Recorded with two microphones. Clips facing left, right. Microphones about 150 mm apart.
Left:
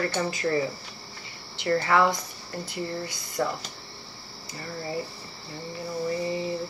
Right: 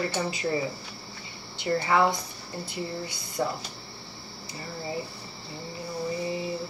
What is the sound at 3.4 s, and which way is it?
Speech, 15° right (ahead or behind).